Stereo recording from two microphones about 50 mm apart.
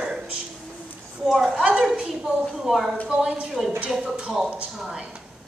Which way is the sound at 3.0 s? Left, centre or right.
Right.